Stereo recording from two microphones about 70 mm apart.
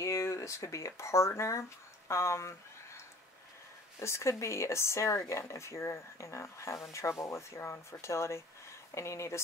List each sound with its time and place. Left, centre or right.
0.0 s speech: left
4.0 s speech: left